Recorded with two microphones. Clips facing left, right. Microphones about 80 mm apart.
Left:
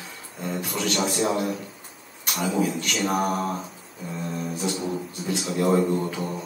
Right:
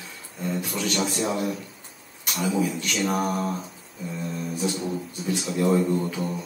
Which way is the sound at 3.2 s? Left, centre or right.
Left.